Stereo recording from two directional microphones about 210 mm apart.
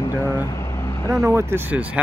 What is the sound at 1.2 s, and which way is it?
Speech, 10° right (ahead or behind).